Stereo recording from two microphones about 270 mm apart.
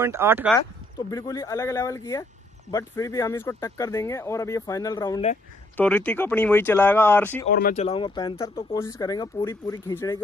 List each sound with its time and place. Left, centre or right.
0.0 s speech: centre
1.1 s speech: centre
7.5 s speech: left; by 10.2 s centre